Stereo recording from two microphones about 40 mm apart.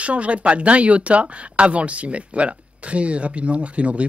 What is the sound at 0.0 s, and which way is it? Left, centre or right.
Speech, right.